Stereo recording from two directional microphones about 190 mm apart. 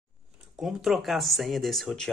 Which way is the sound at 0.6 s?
Centre (ahead or behind).